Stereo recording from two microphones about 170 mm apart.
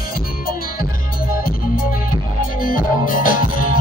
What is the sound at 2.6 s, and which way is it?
Music, 55° left (ahead or behind).